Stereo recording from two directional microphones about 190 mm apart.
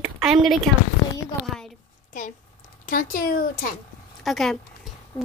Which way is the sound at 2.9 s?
45° left (ahead or behind).